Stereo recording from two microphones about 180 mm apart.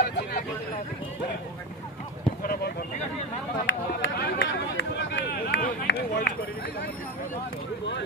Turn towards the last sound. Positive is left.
turn(degrees=60)  # may be behind; listen again after turning